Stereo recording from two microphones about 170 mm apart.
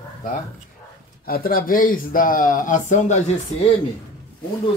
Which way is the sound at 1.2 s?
60° left (ahead or behind).